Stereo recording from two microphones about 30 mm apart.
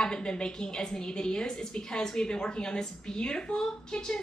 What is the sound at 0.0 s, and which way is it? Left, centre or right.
A woman's voice, left.